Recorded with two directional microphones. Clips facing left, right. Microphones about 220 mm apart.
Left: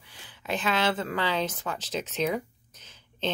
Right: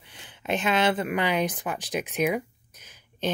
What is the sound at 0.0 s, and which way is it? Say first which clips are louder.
Speech: right 5 dB; 20° right (ahead or behind).